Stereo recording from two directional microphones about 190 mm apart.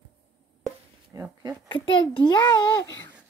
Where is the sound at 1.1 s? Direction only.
15° right (ahead or behind).